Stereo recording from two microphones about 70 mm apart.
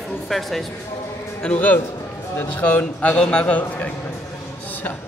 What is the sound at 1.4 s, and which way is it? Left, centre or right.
Speech, left.